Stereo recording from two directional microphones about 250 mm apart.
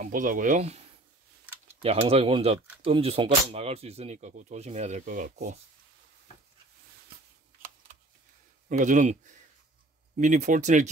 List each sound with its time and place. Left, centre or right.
0.0 s speech: right
8.6 s speech: right